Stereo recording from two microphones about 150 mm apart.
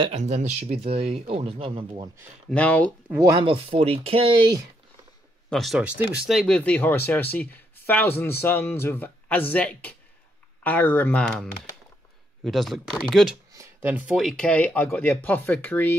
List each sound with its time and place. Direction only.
0.1 s speech: 50° right (ahead or behind)
2.5 s speech: 10° left (ahead or behind)
3.3 s speech: 30° right (ahead or behind)
3.7 s speech: 40° right (ahead or behind)
5.5 s speech: centre (ahead or behind)
6.2 s speech: centre (ahead or behind)
12.4 s speech: centre (ahead or behind)
13.5 s speech: 20° right (ahead or behind); by 16.0 s 15° left (ahead or behind)